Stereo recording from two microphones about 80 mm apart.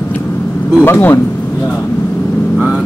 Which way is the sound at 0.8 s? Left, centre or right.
Left.